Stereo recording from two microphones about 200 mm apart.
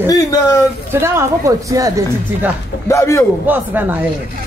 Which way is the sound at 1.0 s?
15° right (ahead or behind).